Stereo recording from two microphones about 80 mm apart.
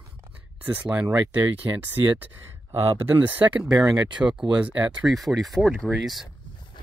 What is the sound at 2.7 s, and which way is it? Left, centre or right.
Speech, right.